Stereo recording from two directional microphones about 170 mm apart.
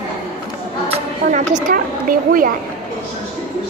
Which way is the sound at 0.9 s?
45° right (ahead or behind).